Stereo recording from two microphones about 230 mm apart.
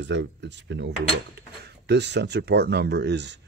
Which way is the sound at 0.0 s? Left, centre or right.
Right.